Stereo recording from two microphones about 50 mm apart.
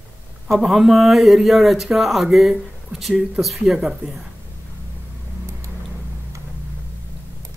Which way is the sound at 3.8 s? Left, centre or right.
Centre.